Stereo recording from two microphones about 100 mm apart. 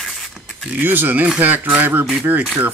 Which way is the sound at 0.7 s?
20° right (ahead or behind).